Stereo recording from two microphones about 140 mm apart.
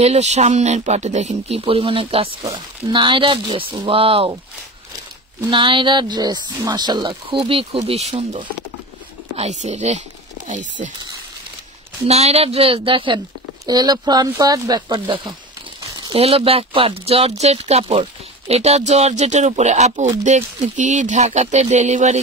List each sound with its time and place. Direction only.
0.0 s speech: 50° right (ahead or behind)
5.4 s speech: 35° right (ahead or behind)
9.4 s speech: 55° right (ahead or behind)
12.0 s speech: 50° right (ahead or behind)
15.8 s a sound: 30° right (ahead or behind)
16.2 s speech: 45° right (ahead or behind)